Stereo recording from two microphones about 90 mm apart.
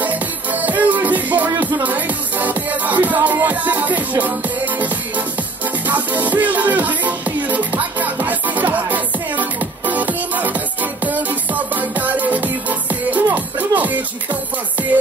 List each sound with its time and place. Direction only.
0.0 s music: 20° right (ahead or behind)